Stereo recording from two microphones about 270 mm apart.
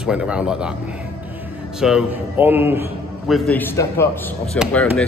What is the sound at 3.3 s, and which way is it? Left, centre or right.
A man's voice, centre.